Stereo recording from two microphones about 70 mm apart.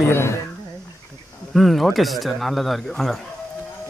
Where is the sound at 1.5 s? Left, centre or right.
Centre.